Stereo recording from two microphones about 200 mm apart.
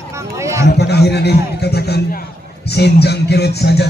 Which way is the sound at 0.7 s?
55° left (ahead or behind).